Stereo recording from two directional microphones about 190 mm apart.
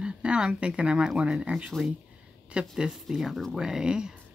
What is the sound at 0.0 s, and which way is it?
Speech, 5° right (ahead or behind).